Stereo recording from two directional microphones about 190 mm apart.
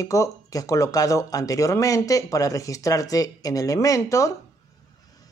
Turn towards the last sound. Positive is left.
turn(degrees=15)  # may be behind; listen again after turning